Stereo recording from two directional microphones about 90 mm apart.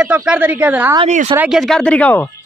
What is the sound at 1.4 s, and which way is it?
Speech, 5° right (ahead or behind).